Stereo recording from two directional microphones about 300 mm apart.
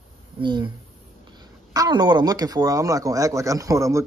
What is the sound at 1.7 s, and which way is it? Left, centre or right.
Speech, centre.